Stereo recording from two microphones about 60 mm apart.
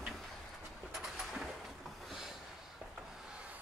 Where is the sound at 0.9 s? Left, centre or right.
Centre.